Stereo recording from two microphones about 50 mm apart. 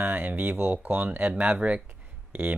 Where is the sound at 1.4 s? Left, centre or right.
Right.